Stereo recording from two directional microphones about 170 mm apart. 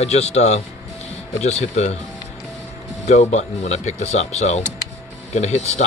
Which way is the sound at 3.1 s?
40° left (ahead or behind).